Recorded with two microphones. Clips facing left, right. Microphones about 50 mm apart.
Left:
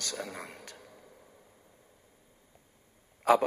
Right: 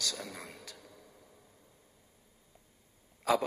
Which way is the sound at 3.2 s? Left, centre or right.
Left.